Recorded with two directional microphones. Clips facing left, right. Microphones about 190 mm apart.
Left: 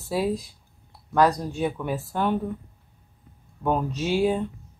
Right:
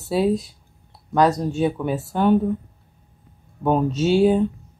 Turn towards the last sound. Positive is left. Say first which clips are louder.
# right 6 dB
turn(degrees=-25)  # may be behind; listen again after turning